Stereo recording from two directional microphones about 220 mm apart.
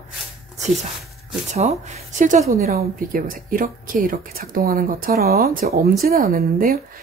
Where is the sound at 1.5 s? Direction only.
30° right (ahead or behind).